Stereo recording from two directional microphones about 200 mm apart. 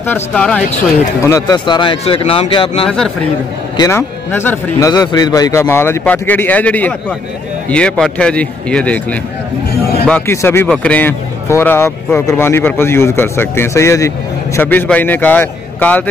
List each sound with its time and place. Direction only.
0.0 s a man's voice: 10° left (ahead or behind)
1.2 s speech: 15° left (ahead or behind)
3.7 s a man's voice: 15° left (ahead or behind)